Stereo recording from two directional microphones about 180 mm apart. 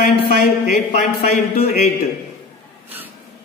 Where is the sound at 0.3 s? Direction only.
60° left (ahead or behind).